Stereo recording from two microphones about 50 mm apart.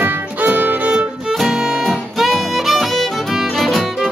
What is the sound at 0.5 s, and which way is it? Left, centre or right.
Music, right.